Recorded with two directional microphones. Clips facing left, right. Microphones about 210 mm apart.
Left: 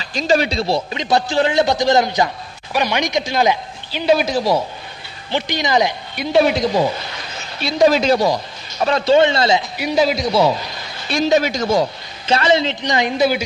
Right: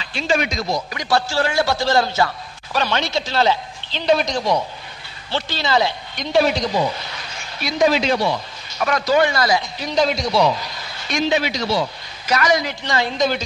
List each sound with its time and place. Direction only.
0.0 s speech: 40° left (ahead or behind); by 4.6 s 5° left (ahead or behind)
5.3 s speech: 15° left (ahead or behind)
7.6 s speech: 40° left (ahead or behind)
9.8 s speech: 10° left (ahead or behind)
11.1 s a man's voice: 40° left (ahead or behind)
12.3 s speech: 25° left (ahead or behind)